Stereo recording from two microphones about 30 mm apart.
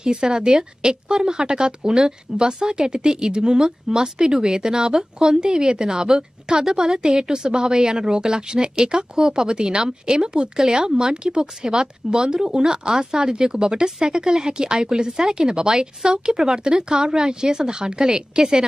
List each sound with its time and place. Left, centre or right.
0.0 s a woman's voice: right
10.9 s speech: right